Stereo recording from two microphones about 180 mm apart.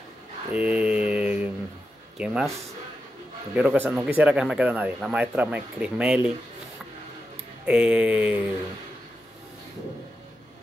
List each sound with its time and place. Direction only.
0.5 s mantra: 5° right (ahead or behind)
2.1 s speech: 5° right (ahead or behind)
3.5 s speech: 10° right (ahead or behind)
7.6 s speech: 5° right (ahead or behind)